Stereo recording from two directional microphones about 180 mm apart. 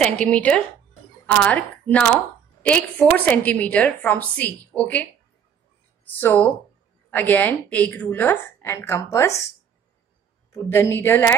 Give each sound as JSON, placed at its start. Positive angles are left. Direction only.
{"t": 0.0, "sound": "a woman's voice", "side_deg": 5}
{"t": 6.1, "sound": "a woman's voice", "side_deg": 10}
{"t": 10.5, "sound": "a woman's voice", "side_deg": 15}